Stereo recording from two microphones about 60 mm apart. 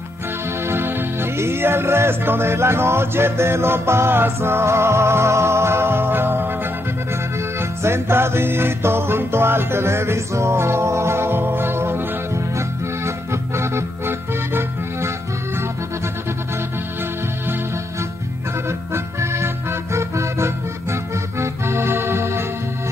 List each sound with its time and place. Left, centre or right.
0.7 s music: right
7.8 s music: right
18.7 s music: right